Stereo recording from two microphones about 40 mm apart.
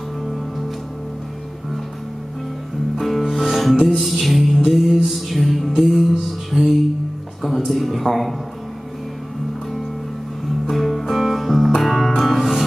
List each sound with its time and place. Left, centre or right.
3.0 s music: centre
6.5 s music: centre
7.4 s music: centre
10.7 s music: centre